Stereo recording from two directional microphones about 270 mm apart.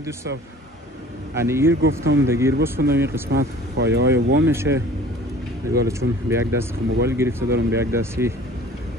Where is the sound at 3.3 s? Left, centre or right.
Right.